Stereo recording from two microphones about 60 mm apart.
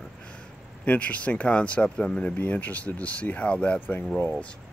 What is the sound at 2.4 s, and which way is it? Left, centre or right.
Speech, left.